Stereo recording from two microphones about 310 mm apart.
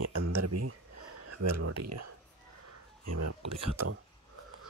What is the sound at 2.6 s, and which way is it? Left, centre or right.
Speech, right.